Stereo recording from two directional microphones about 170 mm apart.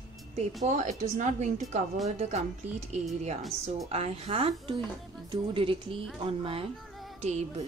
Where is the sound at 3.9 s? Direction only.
35° right (ahead or behind).